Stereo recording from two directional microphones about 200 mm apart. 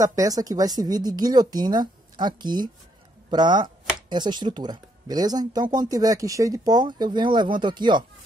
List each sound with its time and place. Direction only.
0.0 s speech: 15° right (ahead or behind)